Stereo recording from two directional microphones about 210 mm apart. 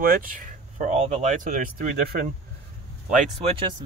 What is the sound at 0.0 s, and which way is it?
Speech, 40° right (ahead or behind).